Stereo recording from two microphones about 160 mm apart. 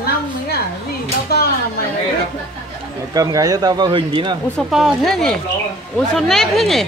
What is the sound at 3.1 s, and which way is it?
Speech, 20° right (ahead or behind).